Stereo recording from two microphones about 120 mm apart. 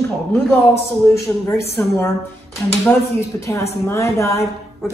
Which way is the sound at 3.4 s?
25° left (ahead or behind).